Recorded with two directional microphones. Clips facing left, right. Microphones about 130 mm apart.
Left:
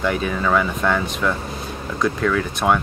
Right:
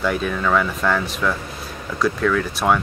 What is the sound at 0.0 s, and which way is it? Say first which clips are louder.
Speech: even; centre (ahead or behind).